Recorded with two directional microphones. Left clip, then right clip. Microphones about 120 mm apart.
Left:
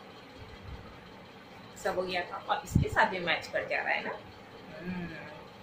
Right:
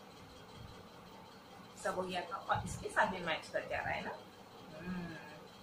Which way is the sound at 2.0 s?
15° left (ahead or behind).